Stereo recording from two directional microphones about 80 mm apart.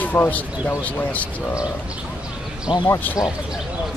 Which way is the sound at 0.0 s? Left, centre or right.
Left.